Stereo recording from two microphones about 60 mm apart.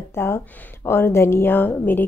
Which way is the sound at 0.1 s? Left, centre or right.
Left.